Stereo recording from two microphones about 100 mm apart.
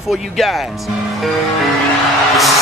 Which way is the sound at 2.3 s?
Centre (ahead or behind).